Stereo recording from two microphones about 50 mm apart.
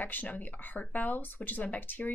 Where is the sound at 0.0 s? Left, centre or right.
Left.